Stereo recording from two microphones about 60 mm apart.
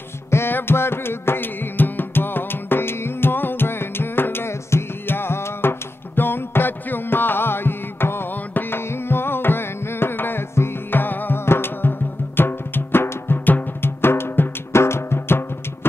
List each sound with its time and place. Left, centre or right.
0.3 s music: left